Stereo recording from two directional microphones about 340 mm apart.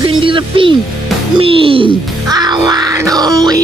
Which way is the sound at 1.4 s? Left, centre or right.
Centre.